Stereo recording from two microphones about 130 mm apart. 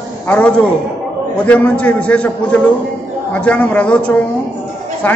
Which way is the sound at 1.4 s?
10° left (ahead or behind).